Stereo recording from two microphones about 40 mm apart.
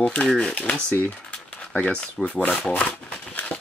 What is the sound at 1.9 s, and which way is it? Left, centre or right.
Speech, left.